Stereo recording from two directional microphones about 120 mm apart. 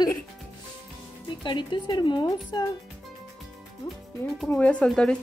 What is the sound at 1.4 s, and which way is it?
Speech, 40° left (ahead or behind).